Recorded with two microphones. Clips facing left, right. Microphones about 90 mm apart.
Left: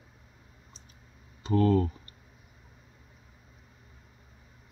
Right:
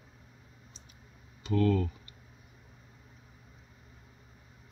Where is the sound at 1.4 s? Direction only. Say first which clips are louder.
Left 3 dB; 35° left (ahead or behind).